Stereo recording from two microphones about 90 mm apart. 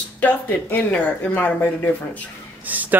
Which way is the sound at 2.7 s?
20° right (ahead or behind).